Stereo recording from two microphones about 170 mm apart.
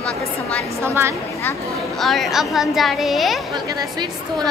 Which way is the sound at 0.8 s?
15° right (ahead or behind).